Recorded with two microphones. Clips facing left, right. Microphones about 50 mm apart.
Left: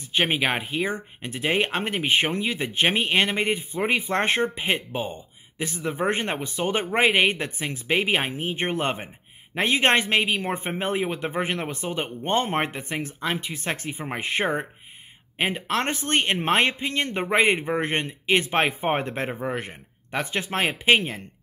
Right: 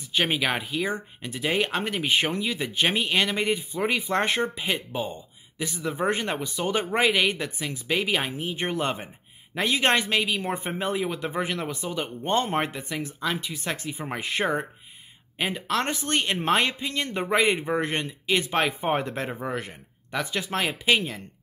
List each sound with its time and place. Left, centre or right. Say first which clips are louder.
0.1 s speech: left 2 dB; left
13.9 s speech: left 2 dB; left